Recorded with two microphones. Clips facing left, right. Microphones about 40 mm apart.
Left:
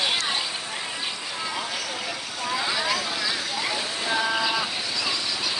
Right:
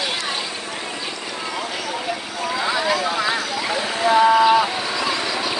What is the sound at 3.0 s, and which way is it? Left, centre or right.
Clip-clop, right.